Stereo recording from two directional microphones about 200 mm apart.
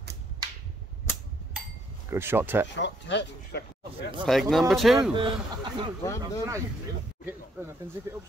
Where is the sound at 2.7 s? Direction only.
60° left (ahead or behind).